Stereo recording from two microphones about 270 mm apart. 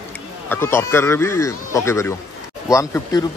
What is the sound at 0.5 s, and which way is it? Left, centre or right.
Speech, centre.